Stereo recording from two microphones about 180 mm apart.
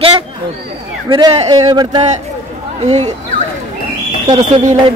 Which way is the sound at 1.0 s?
20° right (ahead or behind).